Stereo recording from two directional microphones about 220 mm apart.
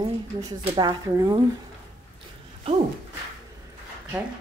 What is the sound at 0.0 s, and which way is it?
Speech, 20° right (ahead or behind).